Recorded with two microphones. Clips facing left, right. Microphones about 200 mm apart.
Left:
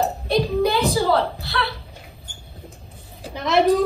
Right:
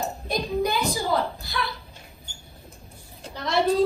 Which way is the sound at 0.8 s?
70° left (ahead or behind).